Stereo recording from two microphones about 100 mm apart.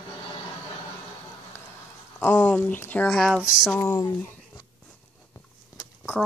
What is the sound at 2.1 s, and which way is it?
Speech, 20° left (ahead or behind).